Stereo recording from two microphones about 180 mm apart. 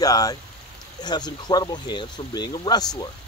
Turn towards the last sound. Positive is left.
turn(degrees=20)  # may be behind; listen again after turning